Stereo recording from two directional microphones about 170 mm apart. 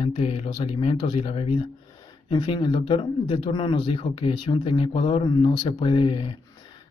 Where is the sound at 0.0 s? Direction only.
35° left (ahead or behind).